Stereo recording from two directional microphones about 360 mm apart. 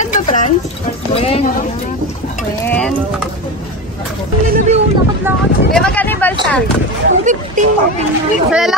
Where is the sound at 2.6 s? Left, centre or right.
Centre.